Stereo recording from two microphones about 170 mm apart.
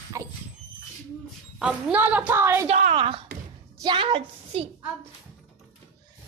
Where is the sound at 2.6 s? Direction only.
45° right (ahead or behind).